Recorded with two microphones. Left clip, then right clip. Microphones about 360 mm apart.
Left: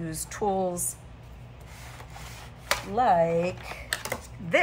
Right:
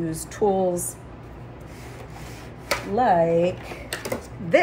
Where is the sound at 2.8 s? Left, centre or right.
Centre.